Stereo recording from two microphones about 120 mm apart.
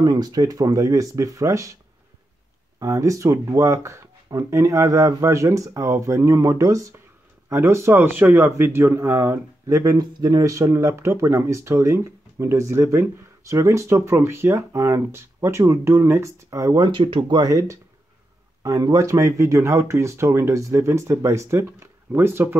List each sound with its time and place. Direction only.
0.0 s speech: 35° right (ahead or behind)
2.8 s speech: 25° right (ahead or behind)